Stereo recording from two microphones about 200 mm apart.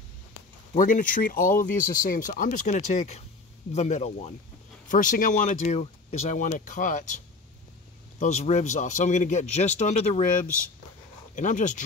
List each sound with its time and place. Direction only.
0.7 s speech: 40° left (ahead or behind)
8.2 s speech: 35° left (ahead or behind)
11.3 s speech: 40° left (ahead or behind)